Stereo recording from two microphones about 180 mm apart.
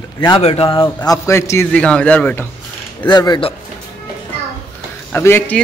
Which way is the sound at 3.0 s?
25° left (ahead or behind).